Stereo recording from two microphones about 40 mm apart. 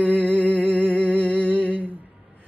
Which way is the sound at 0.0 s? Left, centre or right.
Right.